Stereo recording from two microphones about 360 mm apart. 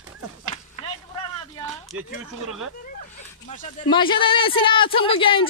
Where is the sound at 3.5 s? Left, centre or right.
Centre.